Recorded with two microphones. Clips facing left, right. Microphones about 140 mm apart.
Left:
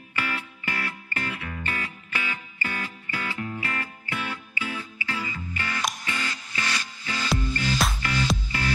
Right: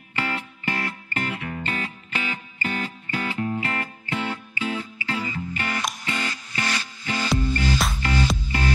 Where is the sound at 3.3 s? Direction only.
35° right (ahead or behind).